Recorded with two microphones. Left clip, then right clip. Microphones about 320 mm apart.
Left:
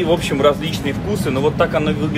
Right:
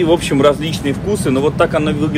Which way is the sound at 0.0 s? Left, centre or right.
Right.